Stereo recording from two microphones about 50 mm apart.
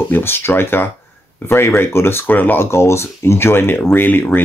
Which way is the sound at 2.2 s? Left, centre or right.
Left.